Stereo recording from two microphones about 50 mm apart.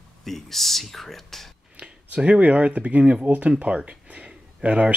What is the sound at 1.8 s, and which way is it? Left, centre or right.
Speech, right.